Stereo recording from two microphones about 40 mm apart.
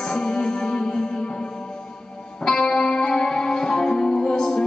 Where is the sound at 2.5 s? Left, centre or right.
Centre.